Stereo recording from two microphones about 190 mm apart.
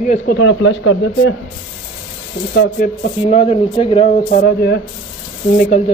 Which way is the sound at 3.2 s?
35° left (ahead or behind).